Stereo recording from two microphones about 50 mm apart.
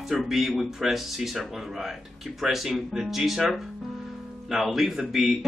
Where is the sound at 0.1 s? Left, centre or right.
Centre.